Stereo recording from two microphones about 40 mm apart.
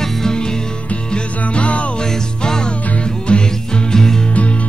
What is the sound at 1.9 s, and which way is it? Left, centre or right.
Music, centre.